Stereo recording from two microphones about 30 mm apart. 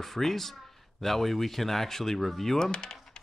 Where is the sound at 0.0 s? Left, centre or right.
Centre.